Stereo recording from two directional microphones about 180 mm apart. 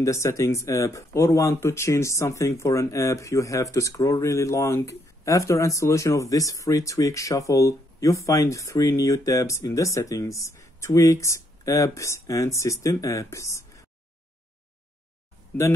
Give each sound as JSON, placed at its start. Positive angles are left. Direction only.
{"t": 0.0, "sound": "speech", "side_deg": 15}